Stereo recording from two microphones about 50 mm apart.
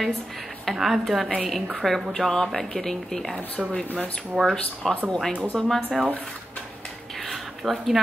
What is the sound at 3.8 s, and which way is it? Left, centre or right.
Speech, left.